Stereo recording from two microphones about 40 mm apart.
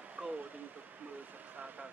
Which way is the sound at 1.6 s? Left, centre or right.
Right.